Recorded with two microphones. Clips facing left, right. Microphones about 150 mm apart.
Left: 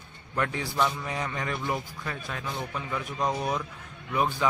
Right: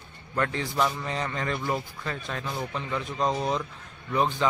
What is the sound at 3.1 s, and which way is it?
Speech, 25° right (ahead or behind).